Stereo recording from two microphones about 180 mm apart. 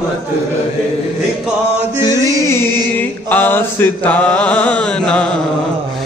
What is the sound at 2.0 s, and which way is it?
Chant, 20° left (ahead or behind).